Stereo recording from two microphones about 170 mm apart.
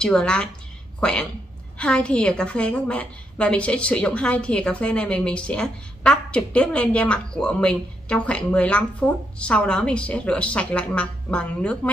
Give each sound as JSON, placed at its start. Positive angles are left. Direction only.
{"t": 0.0, "sound": "a woman's voice", "side_deg": 5}
{"t": 1.8, "sound": "a woman's voice", "side_deg": 5}